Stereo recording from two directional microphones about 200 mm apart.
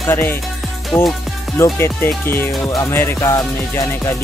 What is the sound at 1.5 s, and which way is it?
Speech, 15° left (ahead or behind).